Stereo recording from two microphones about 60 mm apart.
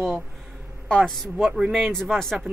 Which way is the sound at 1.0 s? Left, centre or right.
Centre.